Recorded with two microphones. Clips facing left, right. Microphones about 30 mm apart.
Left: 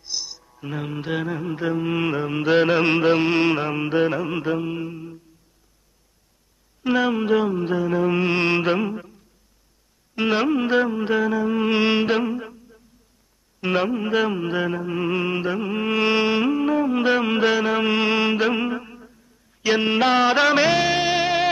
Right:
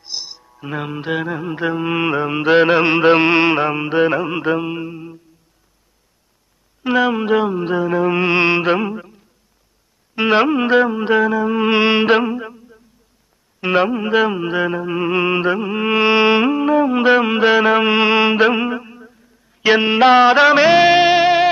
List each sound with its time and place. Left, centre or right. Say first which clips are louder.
0.0 s music: right 2 dB; right
3.0 s music: right 6 dB; right
3.6 s music: right 5 dB; centre
6.8 s music: right 4 dB; centre
10.1 s music: right 6 dB; centre
12.3 s a sound: right 4 dB; centre
13.6 s music: right 6 dB; centre
15.1 s music: right 7 dB; right
15.6 s music: right 5 dB; centre
18.6 s a sound: right 4 dB; centre
19.8 s music: right 8 dB; centre